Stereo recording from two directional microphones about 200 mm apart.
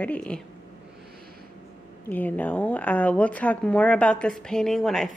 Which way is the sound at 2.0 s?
10° left (ahead or behind).